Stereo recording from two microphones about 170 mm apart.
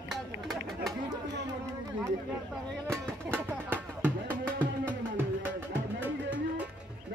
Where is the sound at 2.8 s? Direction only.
15° right (ahead or behind).